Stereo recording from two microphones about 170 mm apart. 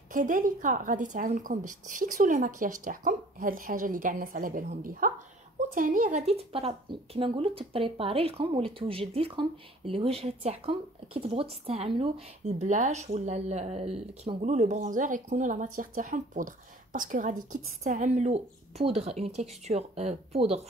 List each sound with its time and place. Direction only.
0.1 s a woman's voice: 50° right (ahead or behind)